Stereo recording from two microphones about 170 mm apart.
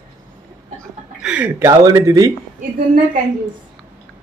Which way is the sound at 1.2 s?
10° right (ahead or behind).